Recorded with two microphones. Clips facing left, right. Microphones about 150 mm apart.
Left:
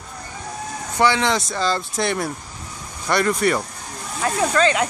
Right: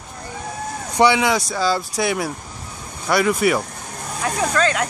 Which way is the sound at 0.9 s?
15° right (ahead or behind).